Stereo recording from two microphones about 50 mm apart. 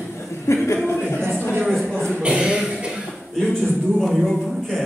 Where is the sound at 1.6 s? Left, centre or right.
Centre.